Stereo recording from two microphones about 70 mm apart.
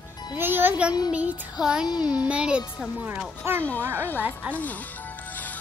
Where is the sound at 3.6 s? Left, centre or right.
Left.